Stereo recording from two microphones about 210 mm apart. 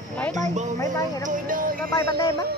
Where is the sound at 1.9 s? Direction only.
15° left (ahead or behind).